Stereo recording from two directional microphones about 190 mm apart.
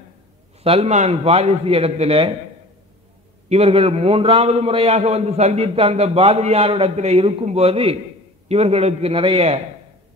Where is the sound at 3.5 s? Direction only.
30° right (ahead or behind).